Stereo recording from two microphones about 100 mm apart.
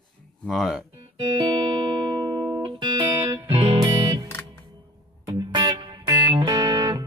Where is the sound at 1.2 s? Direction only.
50° right (ahead or behind).